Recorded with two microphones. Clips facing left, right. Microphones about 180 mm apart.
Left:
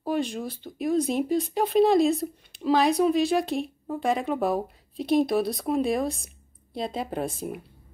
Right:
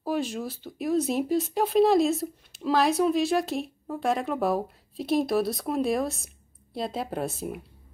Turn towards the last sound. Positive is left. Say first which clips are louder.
# left 1 dB
turn(degrees=0)  # may be behind; listen again after turning